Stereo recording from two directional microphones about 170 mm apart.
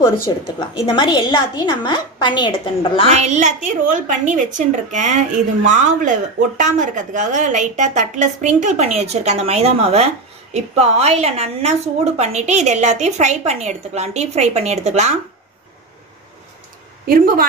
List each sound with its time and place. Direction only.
0.0 s a woman's voice: 25° left (ahead or behind)
3.1 s a woman's voice: 40° right (ahead or behind)
17.0 s speech: 60° right (ahead or behind)